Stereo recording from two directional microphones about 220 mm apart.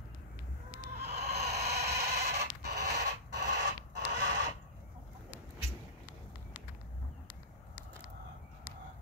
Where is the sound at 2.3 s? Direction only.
50° right (ahead or behind).